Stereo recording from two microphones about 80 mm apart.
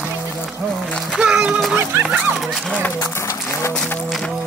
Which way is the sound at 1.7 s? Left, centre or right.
Right.